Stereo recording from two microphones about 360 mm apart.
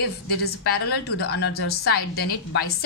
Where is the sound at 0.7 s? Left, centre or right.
Left.